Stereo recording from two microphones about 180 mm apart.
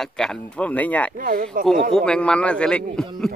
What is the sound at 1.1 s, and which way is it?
Speech, 50° right (ahead or behind).